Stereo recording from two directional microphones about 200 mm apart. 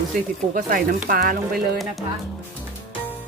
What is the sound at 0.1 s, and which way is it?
Speech, 45° right (ahead or behind).